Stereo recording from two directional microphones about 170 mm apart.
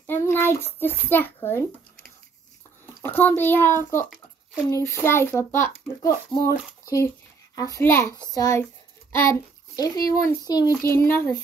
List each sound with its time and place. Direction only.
0.0 s a child's voice: 10° left (ahead or behind)
3.0 s a child's voice: 10° left (ahead or behind)